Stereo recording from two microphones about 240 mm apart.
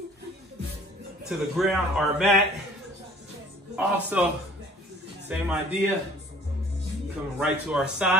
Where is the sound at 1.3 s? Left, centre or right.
Centre.